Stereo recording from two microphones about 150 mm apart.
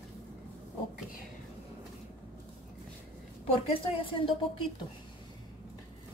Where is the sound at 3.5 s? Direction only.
40° left (ahead or behind).